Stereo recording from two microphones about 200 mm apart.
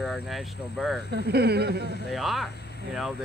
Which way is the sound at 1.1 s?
55° right (ahead or behind).